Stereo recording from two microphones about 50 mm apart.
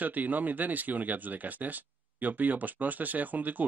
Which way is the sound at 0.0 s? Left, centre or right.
Right.